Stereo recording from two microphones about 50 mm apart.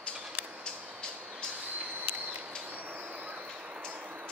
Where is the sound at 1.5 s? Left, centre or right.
Right.